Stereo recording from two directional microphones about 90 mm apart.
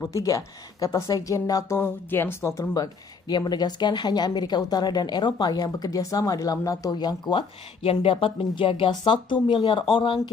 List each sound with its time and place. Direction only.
0.1 s speech: 40° left (ahead or behind)
6.9 s speech: 55° left (ahead or behind)